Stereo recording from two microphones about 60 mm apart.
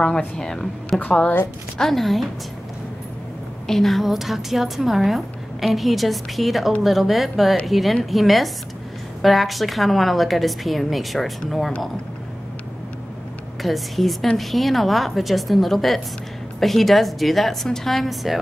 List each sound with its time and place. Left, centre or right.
0.4 s speech: centre
0.9 s a woman's voice: left
1.8 s a woman's voice: centre
3.6 s a woman's voice: centre
13.6 s a woman's voice: centre